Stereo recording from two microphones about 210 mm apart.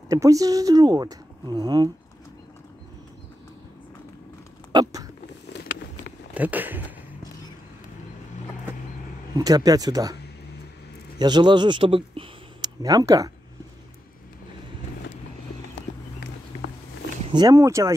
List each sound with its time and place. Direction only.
0.1 s speech: 15° right (ahead or behind)
4.7 s speech: 15° right (ahead or behind)
5.5 s vehicle: 55° left (ahead or behind)
6.3 s speech: 10° right (ahead or behind)
9.3 s speech: 15° right (ahead or behind)
11.1 s speech: 20° right (ahead or behind)
17.3 s speech: 20° right (ahead or behind)